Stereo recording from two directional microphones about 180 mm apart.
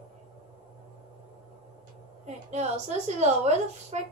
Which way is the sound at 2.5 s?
40° right (ahead or behind).